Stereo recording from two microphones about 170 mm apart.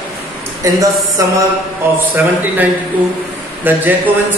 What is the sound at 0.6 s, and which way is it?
A woman's voice, 20° right (ahead or behind).